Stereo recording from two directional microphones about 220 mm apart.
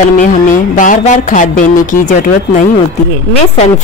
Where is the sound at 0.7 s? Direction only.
35° left (ahead or behind).